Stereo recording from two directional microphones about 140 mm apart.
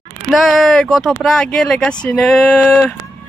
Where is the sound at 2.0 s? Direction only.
10° left (ahead or behind).